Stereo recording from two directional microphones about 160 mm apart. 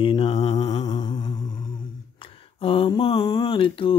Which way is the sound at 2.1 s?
35° left (ahead or behind).